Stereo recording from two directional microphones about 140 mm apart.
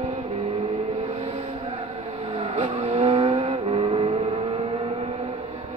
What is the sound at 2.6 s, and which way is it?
Vehicle, 45° right (ahead or behind).